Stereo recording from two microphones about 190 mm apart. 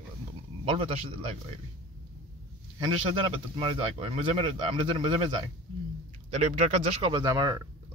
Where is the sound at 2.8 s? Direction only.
30° right (ahead or behind).